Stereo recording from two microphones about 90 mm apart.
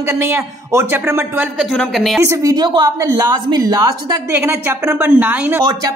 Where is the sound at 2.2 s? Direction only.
35° right (ahead or behind).